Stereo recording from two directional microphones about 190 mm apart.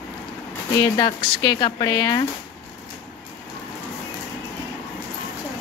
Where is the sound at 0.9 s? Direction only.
20° left (ahead or behind).